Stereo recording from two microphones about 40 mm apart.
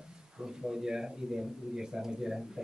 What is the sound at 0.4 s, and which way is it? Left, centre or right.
Speech, centre.